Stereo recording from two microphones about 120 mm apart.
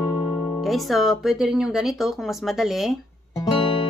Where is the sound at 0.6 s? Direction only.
Centre (ahead or behind).